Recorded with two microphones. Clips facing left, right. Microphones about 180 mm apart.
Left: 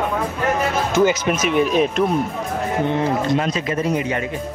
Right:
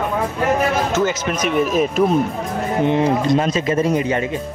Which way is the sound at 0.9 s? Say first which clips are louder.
Left 2 dB; 15° left (ahead or behind).